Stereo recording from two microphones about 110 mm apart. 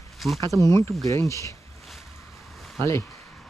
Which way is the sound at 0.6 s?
30° left (ahead or behind).